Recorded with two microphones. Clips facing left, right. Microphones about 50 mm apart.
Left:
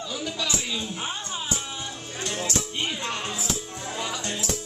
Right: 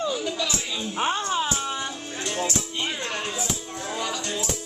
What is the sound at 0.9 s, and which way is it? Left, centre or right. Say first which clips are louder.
Speech: right 8 dB; right.